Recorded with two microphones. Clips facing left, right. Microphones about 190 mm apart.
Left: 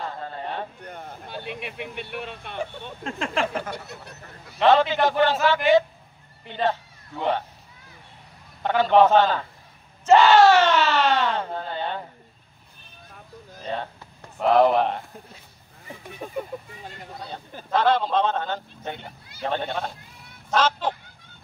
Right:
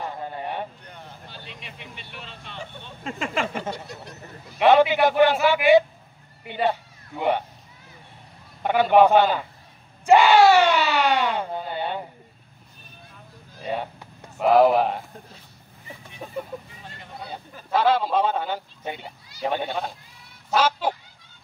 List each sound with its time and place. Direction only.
0.0 s a sound: 15° right (ahead or behind)
0.8 s speech: 50° left (ahead or behind)
3.0 s speech: 5° right (ahead or behind)
4.6 s speech: 15° right (ahead or behind)
8.6 s speech: 15° right (ahead or behind)
10.0 s a sound: 10° right (ahead or behind)
13.7 s a sound: 10° right (ahead or behind)
14.4 s speech: 5° right (ahead or behind)
16.2 s vehicle: 5° left (ahead or behind)
17.6 s speech: 5° right (ahead or behind)
20.4 s fowl: 10° right (ahead or behind)